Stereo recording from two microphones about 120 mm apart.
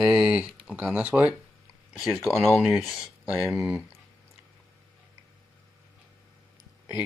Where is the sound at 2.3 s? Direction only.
Centre (ahead or behind).